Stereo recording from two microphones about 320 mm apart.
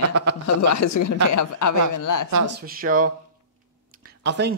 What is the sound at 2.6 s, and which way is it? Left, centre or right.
Speech, right.